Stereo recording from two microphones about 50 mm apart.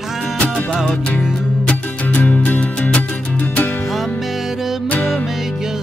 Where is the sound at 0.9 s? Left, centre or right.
Left.